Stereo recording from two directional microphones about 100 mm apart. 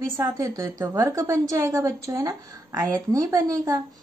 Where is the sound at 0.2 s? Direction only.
30° right (ahead or behind).